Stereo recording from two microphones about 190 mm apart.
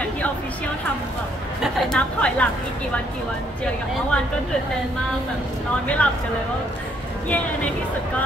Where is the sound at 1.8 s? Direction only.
5° left (ahead or behind).